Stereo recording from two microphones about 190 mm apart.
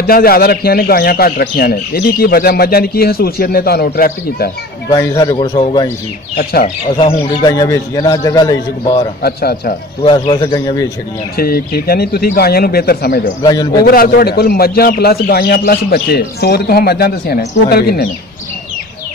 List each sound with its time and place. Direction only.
0.0 s speech: 50° left (ahead or behind)
4.9 s a man's voice: 20° left (ahead or behind)
6.3 s speech: 45° left (ahead or behind)
7.0 s a man's voice: 30° left (ahead or behind)
7.5 s a man's voice: 15° left (ahead or behind)
9.2 s speech: 55° left (ahead or behind)
10.0 s a man's voice: 20° left (ahead or behind)
11.3 s speech: 55° left (ahead or behind)
13.4 s a man's voice: 25° left (ahead or behind)
13.8 s speech: 50° left (ahead or behind)